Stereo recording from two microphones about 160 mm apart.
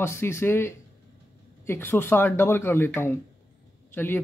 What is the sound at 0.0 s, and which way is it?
A man's voice, 15° left (ahead or behind).